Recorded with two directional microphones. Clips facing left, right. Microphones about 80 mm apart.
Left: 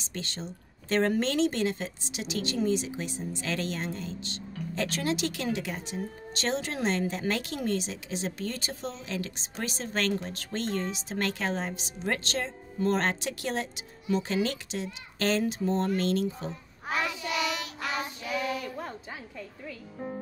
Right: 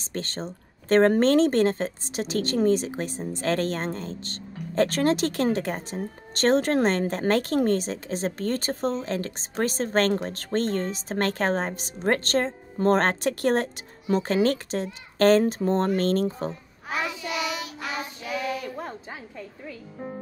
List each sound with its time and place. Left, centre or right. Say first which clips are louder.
0.0 s speech: right 6 dB; right
16.9 s child singing: right 1 dB; centre
18.8 s music: right 3 dB; right